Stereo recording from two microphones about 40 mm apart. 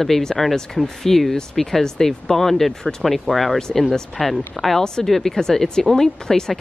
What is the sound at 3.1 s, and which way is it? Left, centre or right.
Speech, centre.